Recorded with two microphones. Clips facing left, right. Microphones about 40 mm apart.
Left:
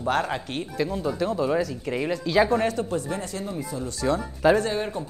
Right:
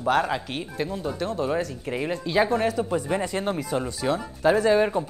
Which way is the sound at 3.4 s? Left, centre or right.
Right.